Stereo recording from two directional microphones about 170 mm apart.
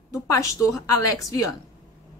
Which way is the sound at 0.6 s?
20° left (ahead or behind).